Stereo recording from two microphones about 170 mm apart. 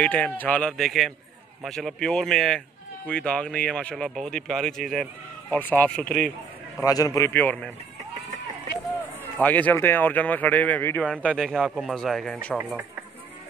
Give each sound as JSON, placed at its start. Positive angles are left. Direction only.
{"t": 0.0, "sound": "speech", "side_deg": 5}
{"t": 6.8, "sound": "speech", "side_deg": 20}
{"t": 9.2, "sound": "speech", "side_deg": 10}
{"t": 12.5, "sound": "speech", "side_deg": -10}